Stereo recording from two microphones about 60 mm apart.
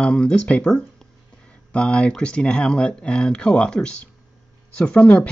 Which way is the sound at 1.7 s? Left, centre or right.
Centre.